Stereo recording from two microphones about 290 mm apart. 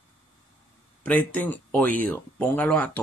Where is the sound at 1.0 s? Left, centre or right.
Centre.